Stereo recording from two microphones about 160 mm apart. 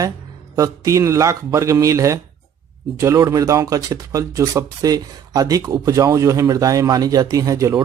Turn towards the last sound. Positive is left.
turn(degrees=-20)  # may be behind; listen again after turning